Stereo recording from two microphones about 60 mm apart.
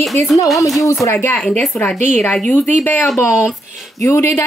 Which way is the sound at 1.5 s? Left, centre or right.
Left.